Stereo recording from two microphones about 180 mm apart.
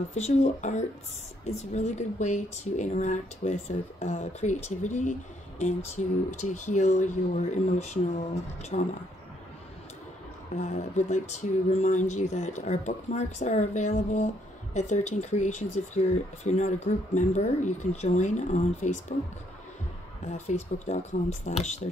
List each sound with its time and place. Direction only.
0.1 s speech: 40° left (ahead or behind)
10.5 s speech: 40° left (ahead or behind)
20.2 s speech: 40° left (ahead or behind)